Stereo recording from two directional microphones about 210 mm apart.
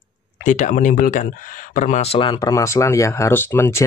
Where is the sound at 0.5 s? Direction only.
35° left (ahead or behind).